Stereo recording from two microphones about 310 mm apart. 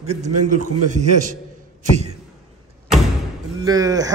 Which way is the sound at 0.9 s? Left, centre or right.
Right.